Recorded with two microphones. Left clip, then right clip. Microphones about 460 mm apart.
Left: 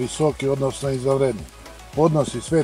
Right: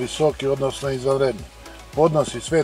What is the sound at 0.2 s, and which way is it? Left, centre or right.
Speech, right.